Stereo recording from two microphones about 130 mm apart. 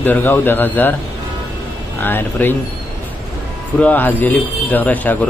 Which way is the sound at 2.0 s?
15° left (ahead or behind).